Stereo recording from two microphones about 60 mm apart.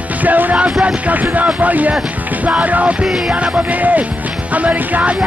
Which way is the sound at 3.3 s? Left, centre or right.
Right.